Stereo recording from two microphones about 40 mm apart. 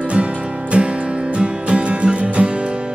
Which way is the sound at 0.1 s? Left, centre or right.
Right.